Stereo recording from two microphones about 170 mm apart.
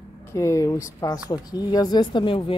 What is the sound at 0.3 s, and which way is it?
Speech, 15° left (ahead or behind).